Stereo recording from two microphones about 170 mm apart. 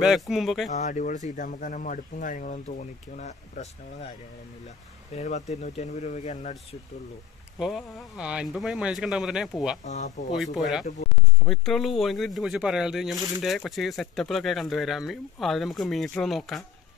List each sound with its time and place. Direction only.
0.0 s speech: centre (ahead or behind)
0.7 s speech: 45° left (ahead or behind)
5.1 s speech: 45° left (ahead or behind)
7.5 s speech: 5° right (ahead or behind)
9.8 s speech: 45° left (ahead or behind)
10.3 s speech: centre (ahead or behind)